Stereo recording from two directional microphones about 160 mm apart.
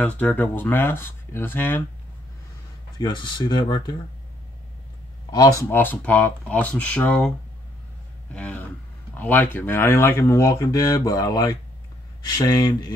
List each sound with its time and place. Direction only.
0.0 s speech: 10° left (ahead or behind)
3.0 s speech: 30° left (ahead or behind)
5.3 s speech: 20° left (ahead or behind)